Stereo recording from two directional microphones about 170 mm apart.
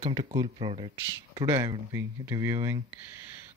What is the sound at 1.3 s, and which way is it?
Speech, 20° right (ahead or behind).